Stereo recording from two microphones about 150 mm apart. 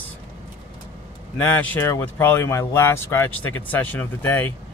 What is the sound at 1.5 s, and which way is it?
Speech, 10° left (ahead or behind).